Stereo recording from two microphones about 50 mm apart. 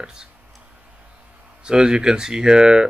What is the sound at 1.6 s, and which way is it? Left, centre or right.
Speech, centre.